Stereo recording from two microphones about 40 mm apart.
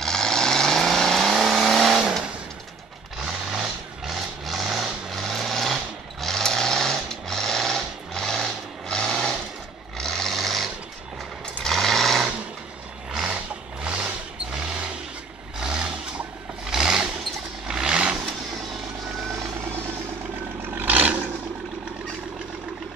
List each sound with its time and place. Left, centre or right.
0.0 s vehicle: centre
0.7 s vehicle: centre
3.2 s vehicle: centre
6.2 s sewing machine: centre
9.9 s vehicle: centre
13.3 s vehicle: right
20.7 s vehicle: right